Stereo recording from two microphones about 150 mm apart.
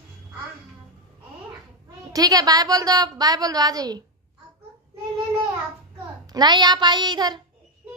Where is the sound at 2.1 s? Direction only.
25° right (ahead or behind).